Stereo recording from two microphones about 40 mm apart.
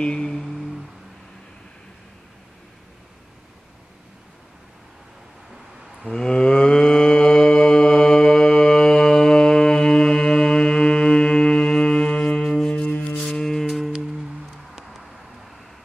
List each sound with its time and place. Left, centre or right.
0.0 s music: left
6.0 s mantra: centre
12.4 s music: centre
12.8 s music: left
13.4 s music: centre
13.7 s music: centre
13.9 s music: centre